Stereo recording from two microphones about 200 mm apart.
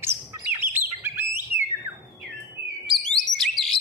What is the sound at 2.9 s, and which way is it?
Chirp, centre (ahead or behind).